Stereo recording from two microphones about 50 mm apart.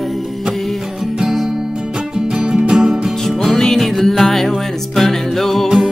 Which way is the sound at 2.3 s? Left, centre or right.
Centre.